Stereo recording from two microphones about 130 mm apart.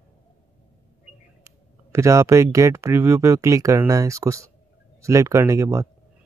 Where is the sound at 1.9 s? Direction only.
25° right (ahead or behind).